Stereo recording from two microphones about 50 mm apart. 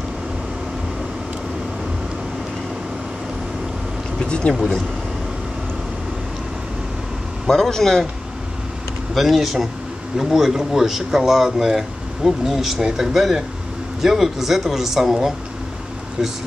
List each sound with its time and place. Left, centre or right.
4.2 s speech: centre
4.6 s speech: centre
7.4 s a man's voice: centre
9.1 s speech: centre